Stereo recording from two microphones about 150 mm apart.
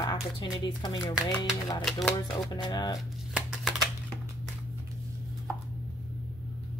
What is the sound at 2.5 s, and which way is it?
Speech, 25° left (ahead or behind).